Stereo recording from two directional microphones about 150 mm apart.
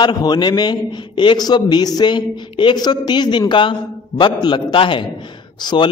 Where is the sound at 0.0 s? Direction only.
30° left (ahead or behind).